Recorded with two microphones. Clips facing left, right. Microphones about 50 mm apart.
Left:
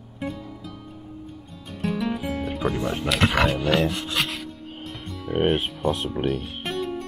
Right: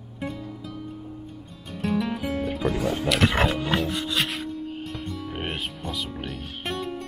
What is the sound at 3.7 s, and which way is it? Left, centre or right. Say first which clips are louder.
Filing: left 3 dB; left.